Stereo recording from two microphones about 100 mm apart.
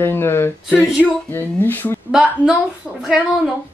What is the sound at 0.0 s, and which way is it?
Speech, 25° left (ahead or behind).